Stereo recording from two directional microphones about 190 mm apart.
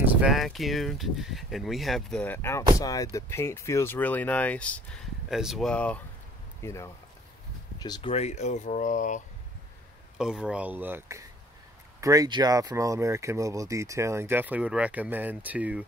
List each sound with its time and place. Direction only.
0.0 s speech: 5° right (ahead or behind); by 9.2 s 45° left (ahead or behind)
10.1 s speech: 5° right (ahead or behind)